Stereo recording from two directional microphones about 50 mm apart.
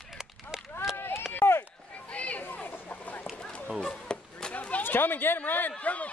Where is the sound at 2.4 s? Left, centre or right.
Left.